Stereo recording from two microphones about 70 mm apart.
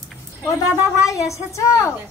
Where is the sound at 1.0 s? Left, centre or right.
Left.